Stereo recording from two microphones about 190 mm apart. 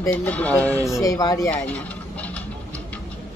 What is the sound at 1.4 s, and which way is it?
Speech, 10° left (ahead or behind).